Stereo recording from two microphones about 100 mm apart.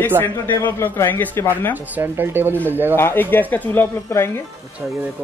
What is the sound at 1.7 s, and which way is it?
Speech, 20° right (ahead or behind).